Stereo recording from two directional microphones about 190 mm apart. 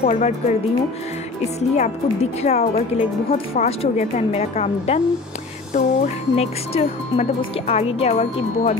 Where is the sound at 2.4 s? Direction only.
35° left (ahead or behind).